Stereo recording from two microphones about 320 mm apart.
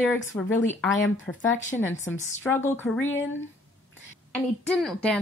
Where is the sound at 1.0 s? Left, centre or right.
Left.